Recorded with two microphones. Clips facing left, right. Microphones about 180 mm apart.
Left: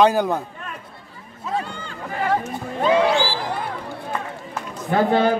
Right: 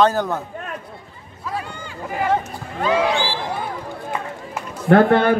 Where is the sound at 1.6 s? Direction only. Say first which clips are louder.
Even; 10° right (ahead or behind).